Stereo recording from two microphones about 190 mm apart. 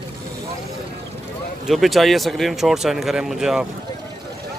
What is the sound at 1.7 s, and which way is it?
Speech, centre (ahead or behind).